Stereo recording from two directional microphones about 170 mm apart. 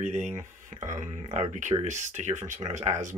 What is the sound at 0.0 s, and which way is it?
Speech, 45° right (ahead or behind).